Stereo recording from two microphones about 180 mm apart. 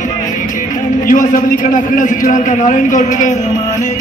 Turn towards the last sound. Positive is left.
turn(degrees=45)  # may be behind; listen again after turning